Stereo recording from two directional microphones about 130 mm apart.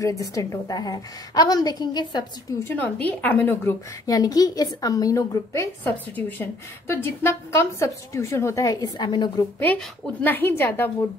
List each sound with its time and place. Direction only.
0.0 s a woman's voice: 25° left (ahead or behind)
2.6 s a woman's voice: 15° left (ahead or behind)
4.0 s a woman's voice: 30° left (ahead or behind)
9.4 s a woman's voice: 15° left (ahead or behind)